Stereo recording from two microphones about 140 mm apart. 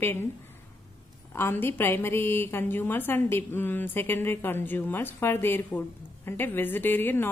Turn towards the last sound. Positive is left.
turn(degrees=15)  # may be behind; listen again after turning